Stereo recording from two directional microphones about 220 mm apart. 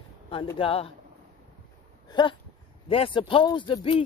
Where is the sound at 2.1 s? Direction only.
20° left (ahead or behind).